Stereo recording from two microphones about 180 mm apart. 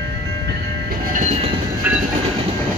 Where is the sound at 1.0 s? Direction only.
45° right (ahead or behind).